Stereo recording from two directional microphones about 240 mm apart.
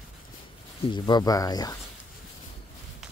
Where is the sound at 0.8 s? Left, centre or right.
Centre.